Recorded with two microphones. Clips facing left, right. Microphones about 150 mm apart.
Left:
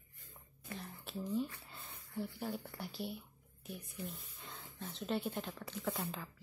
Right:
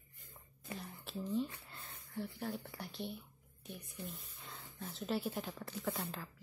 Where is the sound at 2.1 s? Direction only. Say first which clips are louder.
Left 1 dB; centre (ahead or behind).